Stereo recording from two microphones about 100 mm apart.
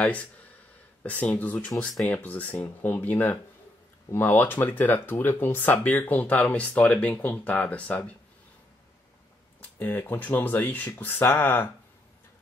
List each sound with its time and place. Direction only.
0.0 s speech: 15° left (ahead or behind)
9.6 s speech: 15° left (ahead or behind)